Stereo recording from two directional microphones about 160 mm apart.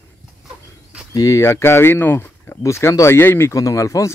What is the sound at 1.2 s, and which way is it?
Speech, 20° left (ahead or behind).